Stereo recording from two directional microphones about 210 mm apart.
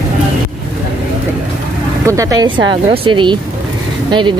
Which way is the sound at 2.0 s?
15° right (ahead or behind).